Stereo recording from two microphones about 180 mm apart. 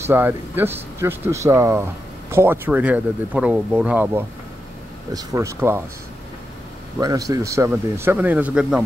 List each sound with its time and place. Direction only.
0.0 s speech: 10° right (ahead or behind)
7.0 s speech: 20° right (ahead or behind)